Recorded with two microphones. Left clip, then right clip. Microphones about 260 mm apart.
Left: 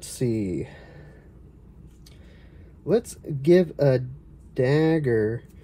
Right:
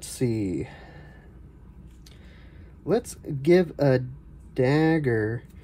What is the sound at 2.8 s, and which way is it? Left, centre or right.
Speech, right.